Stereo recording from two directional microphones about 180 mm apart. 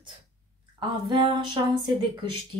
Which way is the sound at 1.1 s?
25° right (ahead or behind).